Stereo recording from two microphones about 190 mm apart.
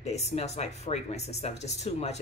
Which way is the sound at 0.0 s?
35° left (ahead or behind).